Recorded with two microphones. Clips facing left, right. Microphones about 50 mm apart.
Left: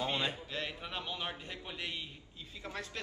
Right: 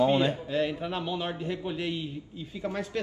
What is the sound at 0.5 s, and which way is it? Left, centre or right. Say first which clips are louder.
A man's voice: right 11 dB; centre.